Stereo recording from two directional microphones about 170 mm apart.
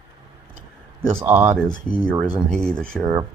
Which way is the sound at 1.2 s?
15° right (ahead or behind).